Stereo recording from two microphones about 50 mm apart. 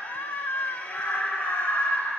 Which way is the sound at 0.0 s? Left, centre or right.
Left.